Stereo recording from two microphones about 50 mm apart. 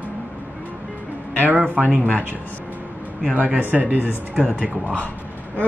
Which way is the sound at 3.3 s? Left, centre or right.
Right.